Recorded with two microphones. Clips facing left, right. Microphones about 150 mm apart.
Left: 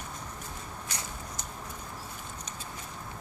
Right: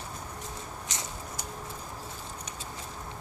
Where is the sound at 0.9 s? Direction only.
20° right (ahead or behind).